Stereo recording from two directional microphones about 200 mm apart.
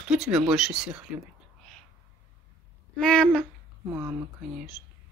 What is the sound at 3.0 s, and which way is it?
Speech, 5° left (ahead or behind).